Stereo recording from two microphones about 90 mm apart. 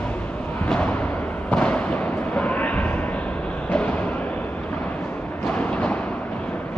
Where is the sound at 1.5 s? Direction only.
15° left (ahead or behind).